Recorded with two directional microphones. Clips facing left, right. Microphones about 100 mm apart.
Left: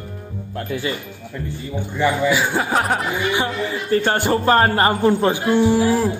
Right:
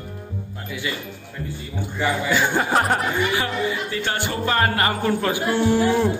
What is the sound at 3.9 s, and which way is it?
A man's voice, 40° left (ahead or behind).